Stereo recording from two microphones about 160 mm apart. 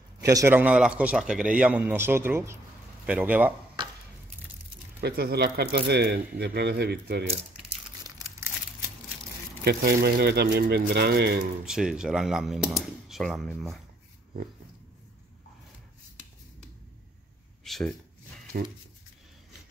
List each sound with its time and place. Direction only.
0.2 s a man's voice: 20° right (ahead or behind)
5.0 s speech: 80° right
9.7 s speech: 80° right
11.6 s speech: 5° right (ahead or behind)
17.6 s a sound: centre (ahead or behind)
18.6 s speech: 75° right (ahead or behind)